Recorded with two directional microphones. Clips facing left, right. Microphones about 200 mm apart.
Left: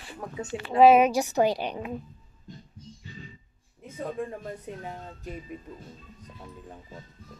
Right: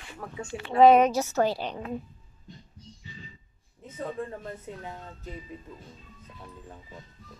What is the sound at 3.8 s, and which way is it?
Speech, 10° left (ahead or behind).